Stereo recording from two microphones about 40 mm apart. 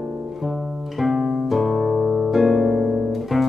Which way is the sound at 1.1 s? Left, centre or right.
Centre.